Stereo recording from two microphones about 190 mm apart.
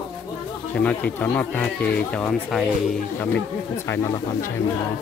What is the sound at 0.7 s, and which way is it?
Speech, 5° left (ahead or behind).